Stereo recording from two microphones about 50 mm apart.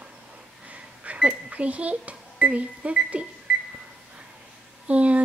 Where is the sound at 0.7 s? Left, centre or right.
Right.